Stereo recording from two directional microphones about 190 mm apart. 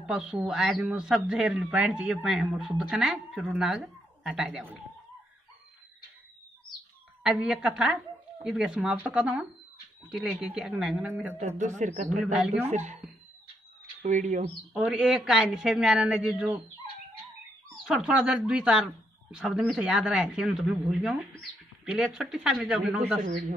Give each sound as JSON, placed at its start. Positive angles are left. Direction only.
{"t": 0.0, "sound": "speech", "side_deg": -5}
{"t": 7.4, "sound": "speech", "side_deg": -5}
{"t": 11.3, "sound": "a man's voice", "side_deg": -35}
{"t": 14.0, "sound": "a man's voice", "side_deg": -40}
{"t": 14.8, "sound": "speech", "side_deg": -5}
{"t": 17.8, "sound": "speech", "side_deg": 0}